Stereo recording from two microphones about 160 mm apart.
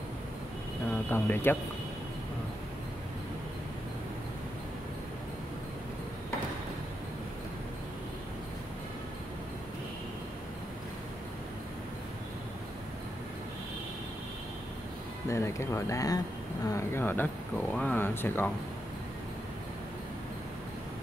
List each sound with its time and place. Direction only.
1.1 s speech: 15° left (ahead or behind)
15.2 s speech: 15° left (ahead or behind)
16.6 s a sound: 15° left (ahead or behind)